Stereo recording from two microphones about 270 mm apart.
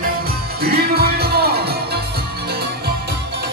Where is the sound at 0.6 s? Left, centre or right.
Right.